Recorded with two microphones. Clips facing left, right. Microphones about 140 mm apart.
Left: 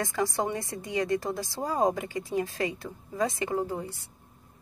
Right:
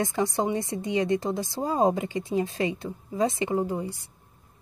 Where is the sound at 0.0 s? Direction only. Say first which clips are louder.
Right 3 dB; 25° right (ahead or behind).